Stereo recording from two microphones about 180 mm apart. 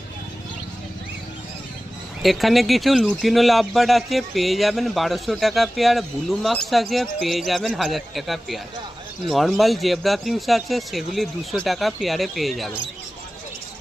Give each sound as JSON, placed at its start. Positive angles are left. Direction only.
{"t": 2.2, "sound": "speech", "side_deg": 0}